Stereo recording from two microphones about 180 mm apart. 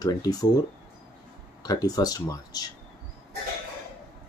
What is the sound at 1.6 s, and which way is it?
Speech, 20° left (ahead or behind).